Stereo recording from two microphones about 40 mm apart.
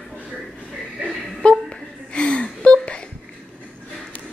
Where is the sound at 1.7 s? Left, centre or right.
Left.